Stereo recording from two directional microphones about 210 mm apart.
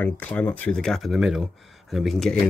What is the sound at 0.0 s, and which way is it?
Speech, 5° left (ahead or behind).